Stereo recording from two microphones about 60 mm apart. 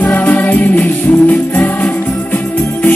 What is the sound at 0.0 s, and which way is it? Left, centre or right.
Music, left.